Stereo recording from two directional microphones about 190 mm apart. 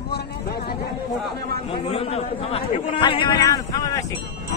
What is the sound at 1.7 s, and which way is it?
A man's voice, 30° left (ahead or behind).